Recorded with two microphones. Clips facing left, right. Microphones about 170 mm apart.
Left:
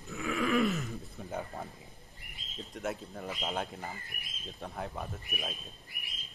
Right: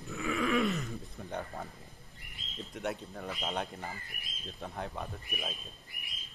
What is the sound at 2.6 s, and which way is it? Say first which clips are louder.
Speech: even; centre (ahead or behind).